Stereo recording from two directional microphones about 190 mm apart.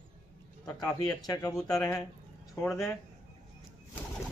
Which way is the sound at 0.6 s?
20° left (ahead or behind).